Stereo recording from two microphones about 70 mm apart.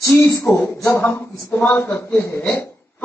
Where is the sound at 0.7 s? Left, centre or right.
Left.